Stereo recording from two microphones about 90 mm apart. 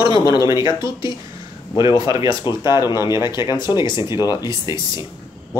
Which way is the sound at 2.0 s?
40° right (ahead or behind).